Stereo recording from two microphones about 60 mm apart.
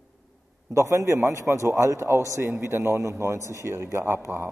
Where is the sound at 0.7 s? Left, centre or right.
Right.